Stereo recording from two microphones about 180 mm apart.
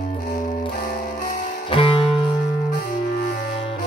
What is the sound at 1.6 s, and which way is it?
Music, 30° left (ahead or behind).